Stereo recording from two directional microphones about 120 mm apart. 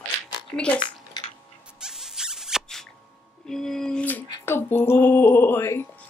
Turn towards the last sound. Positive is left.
turn(degrees=20)  # may be behind; listen again after turning